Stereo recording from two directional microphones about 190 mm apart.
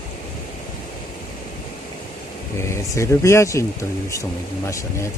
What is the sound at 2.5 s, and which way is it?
Speech, 15° left (ahead or behind).